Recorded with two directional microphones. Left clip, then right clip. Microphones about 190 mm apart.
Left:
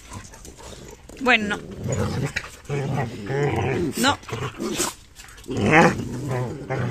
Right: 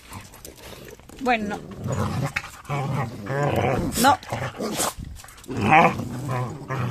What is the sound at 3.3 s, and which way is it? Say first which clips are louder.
Speech: right 1 dB; 35° right (ahead or behind).